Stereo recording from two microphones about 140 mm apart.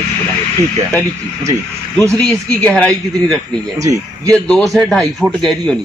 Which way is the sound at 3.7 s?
25° right (ahead or behind).